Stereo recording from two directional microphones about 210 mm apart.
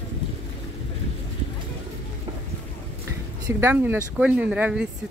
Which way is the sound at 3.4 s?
10° right (ahead or behind).